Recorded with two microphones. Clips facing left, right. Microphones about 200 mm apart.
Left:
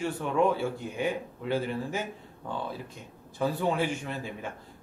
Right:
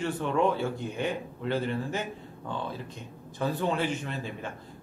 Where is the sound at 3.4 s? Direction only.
10° left (ahead or behind).